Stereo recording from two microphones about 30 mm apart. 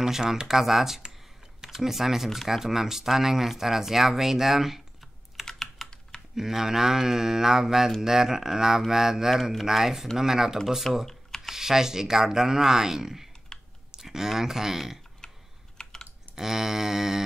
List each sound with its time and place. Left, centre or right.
0.0 s speech: centre
5.4 s computer keyboard: centre
5.8 s typing: centre
6.3 s speech: centre
9.4 s speech: centre
9.7 s speech: centre
10.9 s speech: centre
11.5 s speech: centre
13.5 s typing: centre
14.0 s speech: centre
15.2 s typing: left
16.3 s speech: centre